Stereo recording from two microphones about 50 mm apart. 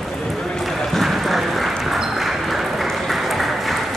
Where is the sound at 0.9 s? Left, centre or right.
Centre.